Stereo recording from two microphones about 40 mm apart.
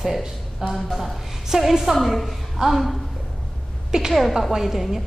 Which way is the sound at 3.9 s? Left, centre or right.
Centre.